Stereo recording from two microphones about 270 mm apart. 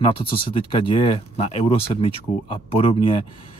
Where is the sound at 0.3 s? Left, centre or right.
Centre.